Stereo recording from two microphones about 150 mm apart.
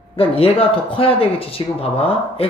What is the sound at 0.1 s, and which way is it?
Speech, 40° left (ahead or behind).